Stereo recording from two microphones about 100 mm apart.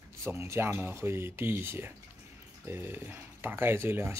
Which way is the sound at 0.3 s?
25° right (ahead or behind).